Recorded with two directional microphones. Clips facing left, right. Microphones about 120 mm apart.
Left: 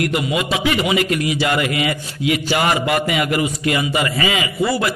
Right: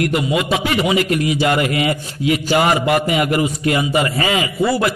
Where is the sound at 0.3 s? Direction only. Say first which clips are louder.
Right 1 dB; 40° right (ahead or behind).